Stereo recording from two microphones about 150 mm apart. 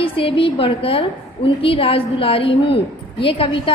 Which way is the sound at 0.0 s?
35° left (ahead or behind).